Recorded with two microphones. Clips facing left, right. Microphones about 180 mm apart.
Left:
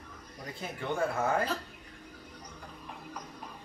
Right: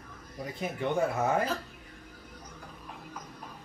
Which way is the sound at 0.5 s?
20° right (ahead or behind).